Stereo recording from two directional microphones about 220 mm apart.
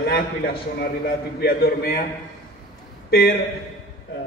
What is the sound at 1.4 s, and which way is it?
Speech, 45° left (ahead or behind).